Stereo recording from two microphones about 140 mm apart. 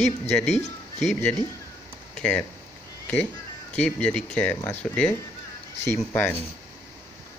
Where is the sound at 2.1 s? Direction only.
5° left (ahead or behind).